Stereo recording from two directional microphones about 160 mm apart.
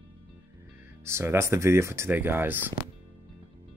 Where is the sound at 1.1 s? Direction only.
15° right (ahead or behind).